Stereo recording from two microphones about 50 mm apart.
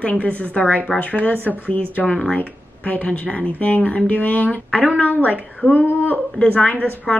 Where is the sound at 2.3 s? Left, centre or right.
Left.